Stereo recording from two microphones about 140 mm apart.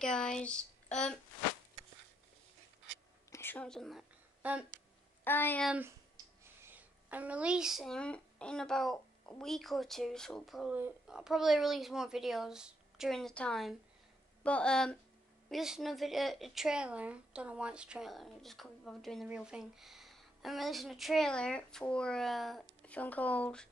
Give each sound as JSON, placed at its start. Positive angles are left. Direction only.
{"t": 0.0, "sound": "speech", "side_deg": 5}
{"t": 3.3, "sound": "whispering", "side_deg": 15}
{"t": 3.6, "sound": "speech", "side_deg": 5}
{"t": 4.4, "sound": "speech", "side_deg": -10}
{"t": 5.2, "sound": "speech", "side_deg": 15}
{"t": 6.4, "sound": "a woman's voice", "side_deg": -15}